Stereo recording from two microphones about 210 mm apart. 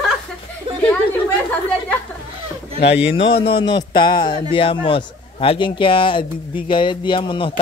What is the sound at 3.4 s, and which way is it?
A man's voice, 20° left (ahead or behind).